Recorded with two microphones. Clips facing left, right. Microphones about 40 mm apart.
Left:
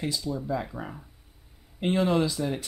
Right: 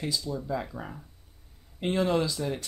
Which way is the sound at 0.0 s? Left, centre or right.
Centre.